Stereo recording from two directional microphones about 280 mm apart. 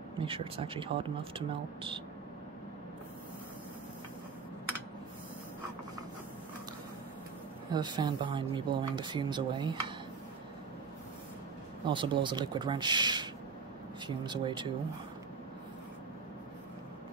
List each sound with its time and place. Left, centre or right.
0.2 s speech: centre
7.7 s speech: centre
11.8 s speech: centre